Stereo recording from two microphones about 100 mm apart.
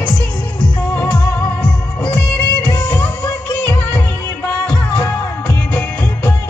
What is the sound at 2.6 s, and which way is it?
Music, 15° left (ahead or behind).